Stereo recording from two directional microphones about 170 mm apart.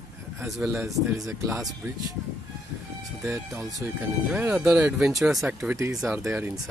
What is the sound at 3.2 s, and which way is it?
Speech, 15° right (ahead or behind).